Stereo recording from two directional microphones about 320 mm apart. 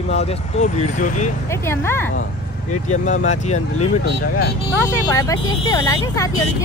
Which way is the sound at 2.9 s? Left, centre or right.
Left.